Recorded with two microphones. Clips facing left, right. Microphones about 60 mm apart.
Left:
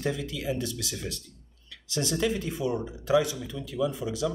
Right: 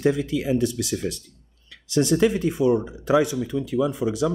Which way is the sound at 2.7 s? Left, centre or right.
Right.